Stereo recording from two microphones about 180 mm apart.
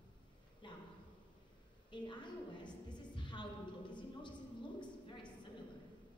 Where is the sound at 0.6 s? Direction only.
25° left (ahead or behind).